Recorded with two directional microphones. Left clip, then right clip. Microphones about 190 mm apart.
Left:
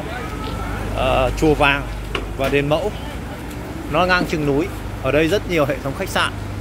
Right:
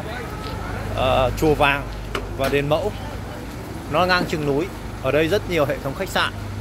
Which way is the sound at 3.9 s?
10° right (ahead or behind).